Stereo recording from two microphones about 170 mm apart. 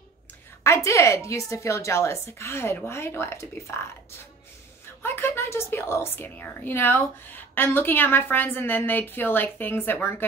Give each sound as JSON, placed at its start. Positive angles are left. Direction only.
{"t": 0.7, "sound": "a woman's voice", "side_deg": 15}
{"t": 5.0, "sound": "a woman's voice", "side_deg": 15}